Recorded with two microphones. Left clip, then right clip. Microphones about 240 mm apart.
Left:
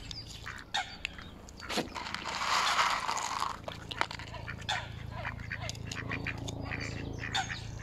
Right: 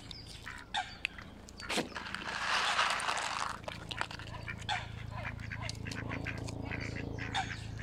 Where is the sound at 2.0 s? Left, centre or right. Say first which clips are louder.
Left 2 dB; left.